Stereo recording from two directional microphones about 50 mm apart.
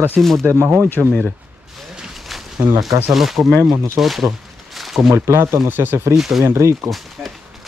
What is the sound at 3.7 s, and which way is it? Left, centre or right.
Speech, right.